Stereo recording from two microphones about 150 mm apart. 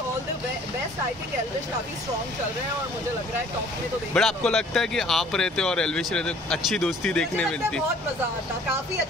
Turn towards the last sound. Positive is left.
turn(degrees=5)  # may be behind; listen again after turning